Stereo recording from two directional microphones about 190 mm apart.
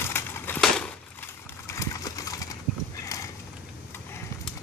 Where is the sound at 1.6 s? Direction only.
15° left (ahead or behind).